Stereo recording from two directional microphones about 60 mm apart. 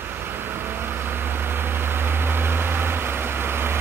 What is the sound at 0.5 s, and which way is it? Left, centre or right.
Vehicle, right.